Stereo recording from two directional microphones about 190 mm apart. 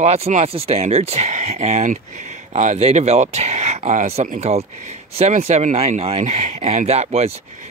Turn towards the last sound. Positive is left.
turn(degrees=-35)  # may be behind; listen again after turning